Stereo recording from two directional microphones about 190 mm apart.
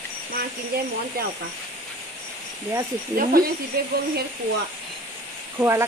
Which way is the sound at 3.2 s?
50° right (ahead or behind).